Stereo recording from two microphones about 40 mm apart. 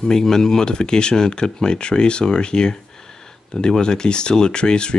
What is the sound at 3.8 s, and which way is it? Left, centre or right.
Speech, left.